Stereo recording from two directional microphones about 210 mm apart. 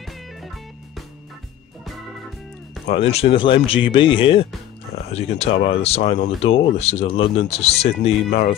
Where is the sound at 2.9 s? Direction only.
30° left (ahead or behind).